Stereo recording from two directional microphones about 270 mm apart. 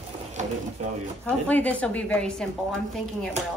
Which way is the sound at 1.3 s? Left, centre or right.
Centre.